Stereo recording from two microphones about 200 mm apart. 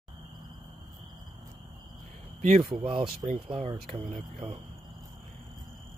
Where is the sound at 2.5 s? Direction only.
25° right (ahead or behind).